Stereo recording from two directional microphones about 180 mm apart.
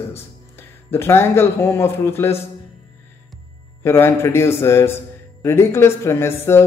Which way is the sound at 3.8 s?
15° left (ahead or behind).